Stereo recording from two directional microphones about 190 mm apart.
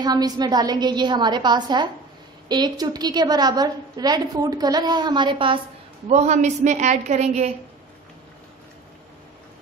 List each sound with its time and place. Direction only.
0.0 s a woman's voice: 20° right (ahead or behind)
6.0 s a woman's voice: 35° right (ahead or behind)